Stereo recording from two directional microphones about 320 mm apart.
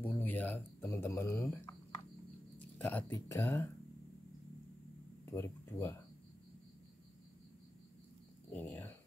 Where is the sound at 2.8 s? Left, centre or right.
Centre.